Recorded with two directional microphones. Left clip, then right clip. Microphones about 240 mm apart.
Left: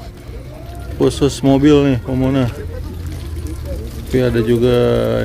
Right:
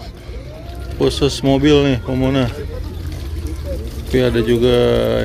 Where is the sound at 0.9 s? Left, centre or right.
Left.